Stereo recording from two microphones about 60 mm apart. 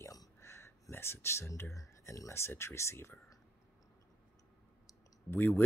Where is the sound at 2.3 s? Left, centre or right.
Left.